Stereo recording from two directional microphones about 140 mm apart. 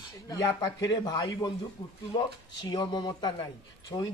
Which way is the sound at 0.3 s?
25° left (ahead or behind).